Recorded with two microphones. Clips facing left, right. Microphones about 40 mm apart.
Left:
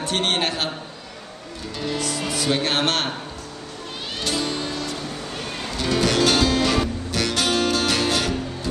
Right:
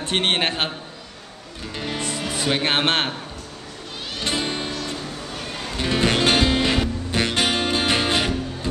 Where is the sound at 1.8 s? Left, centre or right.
Right.